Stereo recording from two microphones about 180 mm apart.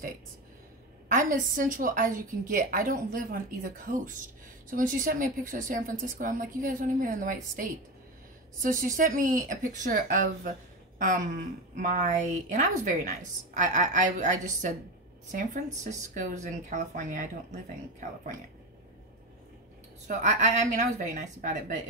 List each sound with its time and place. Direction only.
1.0 s a woman's voice: 50° right (ahead or behind)
20.1 s a woman's voice: 40° right (ahead or behind)